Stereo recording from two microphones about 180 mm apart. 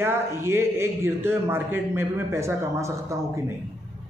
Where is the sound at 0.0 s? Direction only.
15° right (ahead or behind).